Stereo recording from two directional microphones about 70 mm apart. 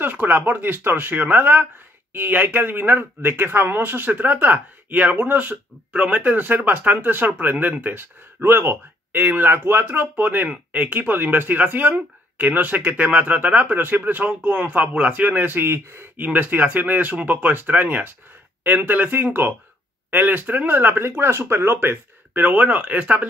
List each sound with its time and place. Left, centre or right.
0.0 s speech: right
16.3 s speech: right